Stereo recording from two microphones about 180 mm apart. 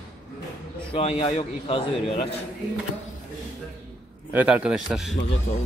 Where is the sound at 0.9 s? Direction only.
35° left (ahead or behind).